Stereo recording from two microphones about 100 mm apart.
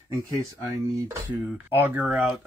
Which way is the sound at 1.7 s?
15° right (ahead or behind).